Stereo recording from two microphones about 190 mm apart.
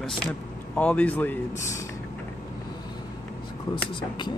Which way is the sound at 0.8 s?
10° left (ahead or behind).